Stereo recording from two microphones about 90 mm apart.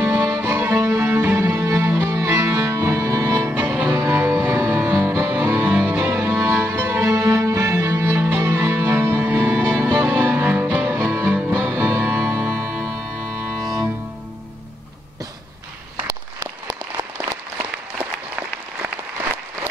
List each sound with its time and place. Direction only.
0.0 s music: 25° right (ahead or behind)
3.3 s music: 20° right (ahead or behind)
12.5 s music: centre (ahead or behind)